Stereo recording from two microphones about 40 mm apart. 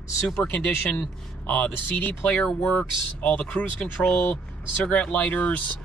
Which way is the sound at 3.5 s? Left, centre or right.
Left.